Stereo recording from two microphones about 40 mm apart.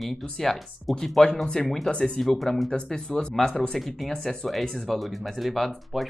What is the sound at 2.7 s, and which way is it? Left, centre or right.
Speech, centre.